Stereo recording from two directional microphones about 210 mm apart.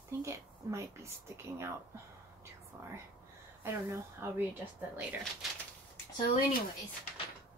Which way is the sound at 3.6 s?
10° right (ahead or behind).